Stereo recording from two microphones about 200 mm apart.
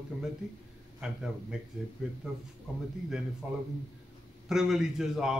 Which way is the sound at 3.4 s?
5° right (ahead or behind).